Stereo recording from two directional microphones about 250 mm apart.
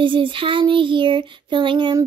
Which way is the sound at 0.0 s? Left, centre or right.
Centre.